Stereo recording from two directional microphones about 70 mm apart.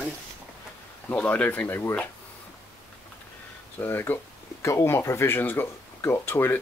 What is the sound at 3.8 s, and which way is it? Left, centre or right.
Speech, left.